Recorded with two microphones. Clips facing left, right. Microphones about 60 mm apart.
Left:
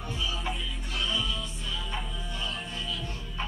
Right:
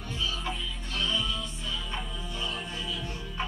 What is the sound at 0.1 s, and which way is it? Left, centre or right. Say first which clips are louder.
Music: right 1 dB; centre.